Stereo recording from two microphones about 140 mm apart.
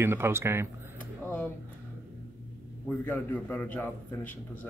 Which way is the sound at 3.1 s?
10° left (ahead or behind).